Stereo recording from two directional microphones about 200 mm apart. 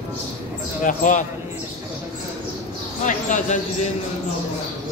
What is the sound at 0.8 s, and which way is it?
Speech, 40° left (ahead or behind).